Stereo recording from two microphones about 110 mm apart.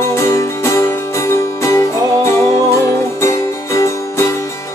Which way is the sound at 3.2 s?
25° left (ahead or behind).